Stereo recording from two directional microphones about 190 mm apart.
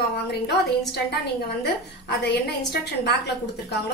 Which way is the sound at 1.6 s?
55° left (ahead or behind).